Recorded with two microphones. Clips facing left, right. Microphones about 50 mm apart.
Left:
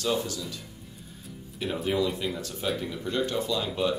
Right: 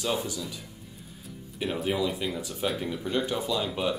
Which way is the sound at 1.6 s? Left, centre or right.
Centre.